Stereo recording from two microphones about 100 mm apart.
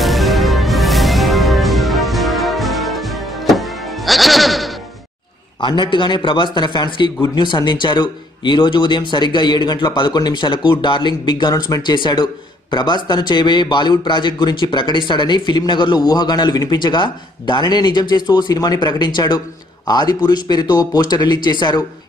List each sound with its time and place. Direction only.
0.0 s music: centre (ahead or behind)
5.6 s a man's voice: 50° left (ahead or behind)